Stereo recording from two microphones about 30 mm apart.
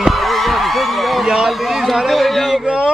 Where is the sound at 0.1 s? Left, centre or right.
Centre.